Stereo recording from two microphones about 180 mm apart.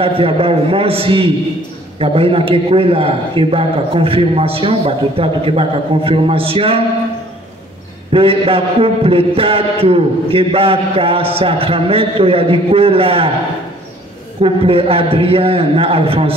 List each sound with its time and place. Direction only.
0.0 s mantra: 30° right (ahead or behind)
8.1 s mantra: 30° right (ahead or behind)
14.4 s mantra: 30° right (ahead or behind)